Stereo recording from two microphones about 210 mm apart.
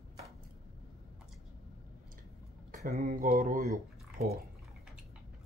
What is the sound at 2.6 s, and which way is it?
Speech, 45° right (ahead or behind).